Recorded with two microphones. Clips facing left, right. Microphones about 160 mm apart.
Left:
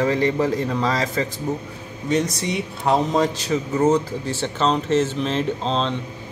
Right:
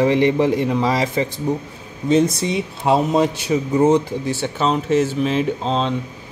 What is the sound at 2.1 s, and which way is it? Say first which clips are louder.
Speech: right 5 dB; 25° right (ahead or behind).